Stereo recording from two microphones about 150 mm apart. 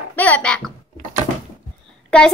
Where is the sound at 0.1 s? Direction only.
10° left (ahead or behind).